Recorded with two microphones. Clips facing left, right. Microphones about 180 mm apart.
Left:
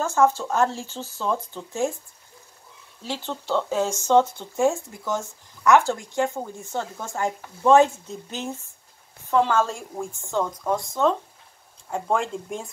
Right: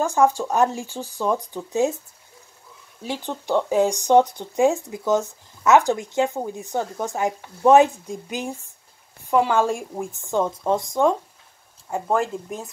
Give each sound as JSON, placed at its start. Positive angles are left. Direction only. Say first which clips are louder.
{"t": 0.0, "sound": "speech", "louder": "right 2 dB", "side_deg": -15}
{"t": 3.0, "sound": "speech", "louder": "right 2 dB", "side_deg": -15}
{"t": 11.9, "sound": "speech", "louder": "right 2 dB", "side_deg": -5}